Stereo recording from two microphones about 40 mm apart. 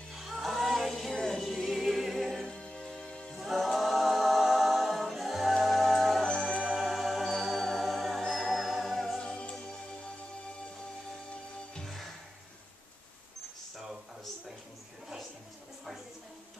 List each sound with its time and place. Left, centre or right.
0.1 s music: centre
2.4 s music: left
3.4 s a capella: centre
6.2 s music: centre
6.8 s music: centre
9.2 s music: left